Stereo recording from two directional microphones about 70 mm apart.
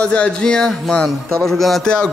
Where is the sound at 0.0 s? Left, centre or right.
Centre.